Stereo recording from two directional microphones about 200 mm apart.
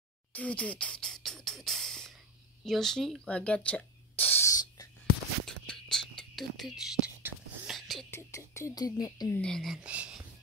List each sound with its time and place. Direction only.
0.3 s beatboxing: 5° left (ahead or behind)
2.6 s spray: centre (ahead or behind)
5.4 s whispering: 5° left (ahead or behind)
7.2 s a sound: centre (ahead or behind)
8.1 s speech: 15° left (ahead or behind)
9.4 s speech: centre (ahead or behind)